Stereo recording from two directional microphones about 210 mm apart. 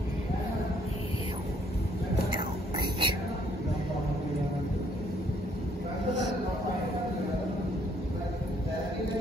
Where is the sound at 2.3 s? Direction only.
20° right (ahead or behind).